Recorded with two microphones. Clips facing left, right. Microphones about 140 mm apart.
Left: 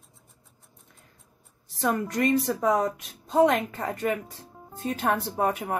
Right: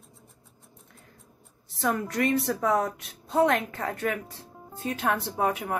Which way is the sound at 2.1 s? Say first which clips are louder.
Left 2 dB; 15° left (ahead or behind).